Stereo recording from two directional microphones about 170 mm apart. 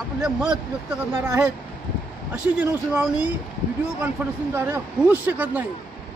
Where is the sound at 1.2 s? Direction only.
15° right (ahead or behind).